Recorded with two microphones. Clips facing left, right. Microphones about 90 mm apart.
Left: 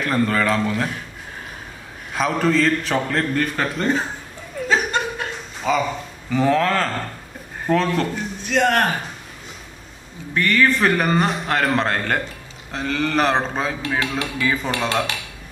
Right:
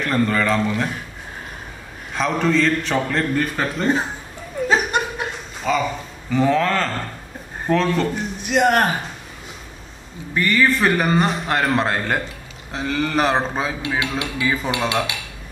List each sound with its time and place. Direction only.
0.0 s speech: centre (ahead or behind)
2.1 s speech: 5° left (ahead or behind)
4.6 s chuckle: 15° right (ahead or behind)
5.6 s speech: 5° left (ahead or behind)
8.1 s speech: 15° right (ahead or behind)
10.3 s speech: centre (ahead or behind)